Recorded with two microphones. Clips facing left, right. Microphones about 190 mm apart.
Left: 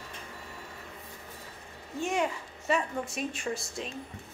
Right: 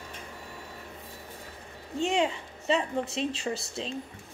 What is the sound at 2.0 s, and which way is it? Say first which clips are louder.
A woman's voice: right 3 dB; 25° right (ahead or behind).